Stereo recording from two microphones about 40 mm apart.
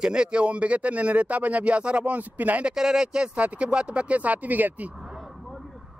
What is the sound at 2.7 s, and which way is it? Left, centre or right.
Speech, centre.